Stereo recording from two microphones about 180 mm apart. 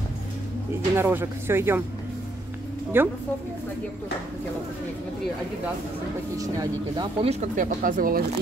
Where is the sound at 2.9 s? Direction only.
10° right (ahead or behind).